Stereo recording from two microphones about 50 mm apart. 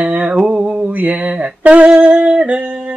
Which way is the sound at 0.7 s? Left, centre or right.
Right.